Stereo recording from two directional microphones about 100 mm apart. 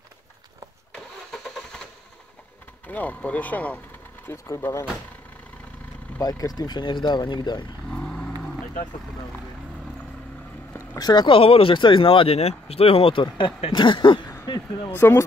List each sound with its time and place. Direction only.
0.9 s vehicle: 5° left (ahead or behind)
2.9 s speech: 15° left (ahead or behind)
4.3 s speech: 25° left (ahead or behind)
6.2 s speech: 40° left (ahead or behind)
7.9 s vehicle: 10° left (ahead or behind)
11.0 s speech: 45° left (ahead or behind)
11.3 s speech: 65° left (ahead or behind)
14.3 s a sound: 40° left (ahead or behind)
14.9 s speech: 25° left (ahead or behind)